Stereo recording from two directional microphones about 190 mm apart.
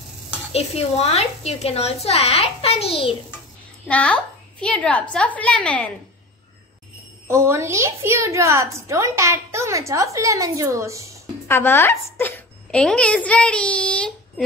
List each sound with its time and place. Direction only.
0.5 s a woman's voice: 35° left (ahead or behind)
3.8 s a woman's voice: 5° left (ahead or behind)
7.2 s a woman's voice: 15° right (ahead or behind)
11.4 s a woman's voice: 10° left (ahead or behind)